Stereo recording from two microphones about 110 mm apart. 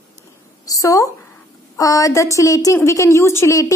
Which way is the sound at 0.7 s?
30° left (ahead or behind).